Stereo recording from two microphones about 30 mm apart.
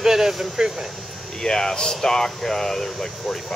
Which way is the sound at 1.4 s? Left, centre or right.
Left.